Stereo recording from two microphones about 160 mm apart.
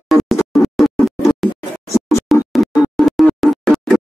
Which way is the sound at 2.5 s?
Centre (ahead or behind).